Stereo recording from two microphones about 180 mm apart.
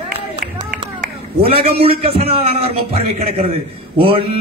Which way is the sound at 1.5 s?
35° right (ahead or behind).